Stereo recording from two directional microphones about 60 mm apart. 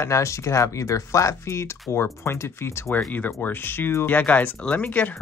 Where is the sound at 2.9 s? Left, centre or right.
Left.